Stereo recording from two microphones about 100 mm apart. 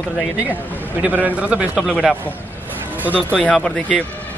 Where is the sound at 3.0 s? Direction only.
15° right (ahead or behind).